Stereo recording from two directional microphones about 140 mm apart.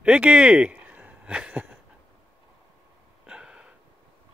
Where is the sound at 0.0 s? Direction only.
10° right (ahead or behind).